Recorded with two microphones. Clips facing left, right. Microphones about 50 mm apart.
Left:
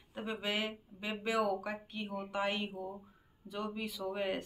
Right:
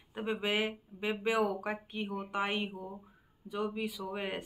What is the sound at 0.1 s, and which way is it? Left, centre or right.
Speech, centre.